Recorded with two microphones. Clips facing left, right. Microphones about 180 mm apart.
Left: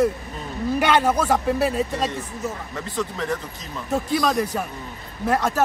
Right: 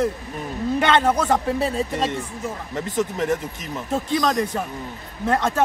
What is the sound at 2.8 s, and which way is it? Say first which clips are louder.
Speech: right 5 dB; 20° right (ahead or behind).